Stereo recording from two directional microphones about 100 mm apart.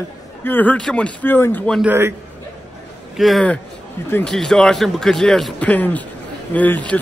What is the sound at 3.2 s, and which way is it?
A man's voice, centre (ahead or behind).